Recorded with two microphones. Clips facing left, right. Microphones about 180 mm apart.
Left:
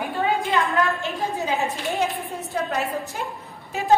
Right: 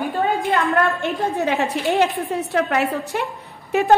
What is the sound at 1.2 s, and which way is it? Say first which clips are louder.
A woman's voice: right 5 dB; 70° right (ahead or behind).